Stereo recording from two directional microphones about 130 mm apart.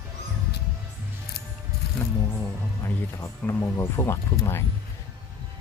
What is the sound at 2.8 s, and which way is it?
Speech, 20° left (ahead or behind).